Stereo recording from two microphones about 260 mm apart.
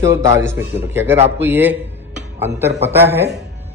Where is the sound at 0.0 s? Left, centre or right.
Centre.